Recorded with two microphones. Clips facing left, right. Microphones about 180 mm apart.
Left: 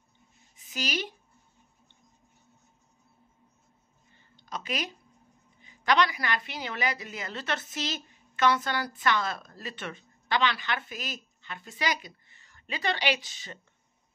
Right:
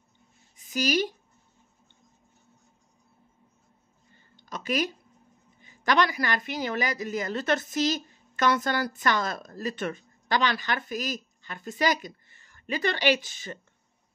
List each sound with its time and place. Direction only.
0.6 s a woman's voice: 45° right (ahead or behind)
4.5 s a woman's voice: 45° right (ahead or behind)